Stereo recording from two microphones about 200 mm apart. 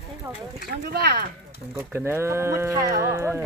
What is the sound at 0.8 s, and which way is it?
Speech, 55° right (ahead or behind).